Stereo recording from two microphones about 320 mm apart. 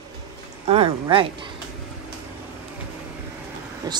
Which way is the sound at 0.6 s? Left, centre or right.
Centre.